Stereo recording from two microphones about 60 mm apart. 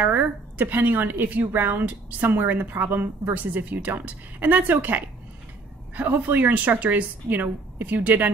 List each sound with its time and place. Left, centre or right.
0.0 s a woman's voice: right